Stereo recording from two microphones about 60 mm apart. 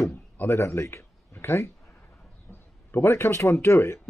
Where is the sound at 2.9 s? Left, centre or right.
Left.